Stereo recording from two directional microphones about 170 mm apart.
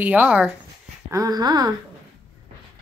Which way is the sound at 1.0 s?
20° right (ahead or behind).